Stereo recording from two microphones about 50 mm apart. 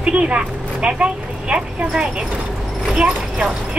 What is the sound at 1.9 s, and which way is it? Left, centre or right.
Speech, centre.